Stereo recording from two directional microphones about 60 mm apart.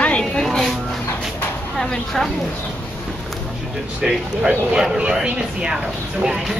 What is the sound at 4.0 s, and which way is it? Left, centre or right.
Speech, centre.